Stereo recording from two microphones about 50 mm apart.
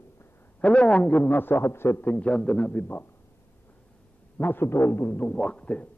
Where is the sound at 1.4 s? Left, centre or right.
Left.